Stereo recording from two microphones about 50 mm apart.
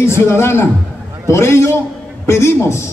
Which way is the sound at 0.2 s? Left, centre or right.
Left.